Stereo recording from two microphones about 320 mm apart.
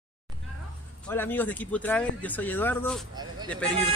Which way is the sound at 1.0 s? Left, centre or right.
Centre.